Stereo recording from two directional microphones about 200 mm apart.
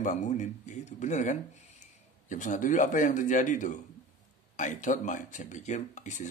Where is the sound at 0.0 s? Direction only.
40° left (ahead or behind).